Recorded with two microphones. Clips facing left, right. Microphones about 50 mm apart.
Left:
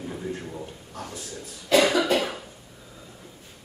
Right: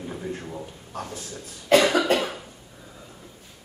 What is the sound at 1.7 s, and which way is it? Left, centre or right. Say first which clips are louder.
Speech: right 2 dB; right.